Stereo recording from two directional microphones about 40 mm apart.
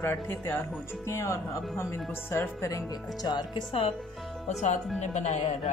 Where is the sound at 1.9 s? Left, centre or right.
Left.